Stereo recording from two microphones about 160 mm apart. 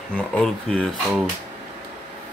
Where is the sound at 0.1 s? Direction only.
5° left (ahead or behind).